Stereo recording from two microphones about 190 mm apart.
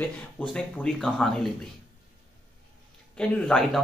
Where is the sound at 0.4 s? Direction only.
5° left (ahead or behind).